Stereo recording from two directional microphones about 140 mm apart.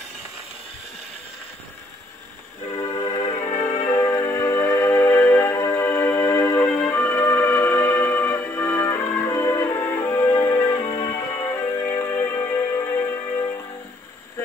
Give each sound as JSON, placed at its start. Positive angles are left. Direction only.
{"t": 2.7, "sound": "music", "side_deg": 25}